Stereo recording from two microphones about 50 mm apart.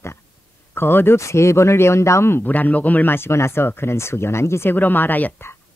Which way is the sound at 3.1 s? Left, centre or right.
Left.